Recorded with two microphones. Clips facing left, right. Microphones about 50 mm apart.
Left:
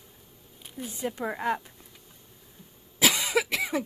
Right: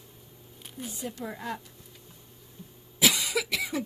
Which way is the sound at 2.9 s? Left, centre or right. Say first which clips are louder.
Left 2 dB; left.